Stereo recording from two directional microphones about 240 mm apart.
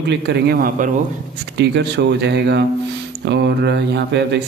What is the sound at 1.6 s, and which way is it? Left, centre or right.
Speech, right.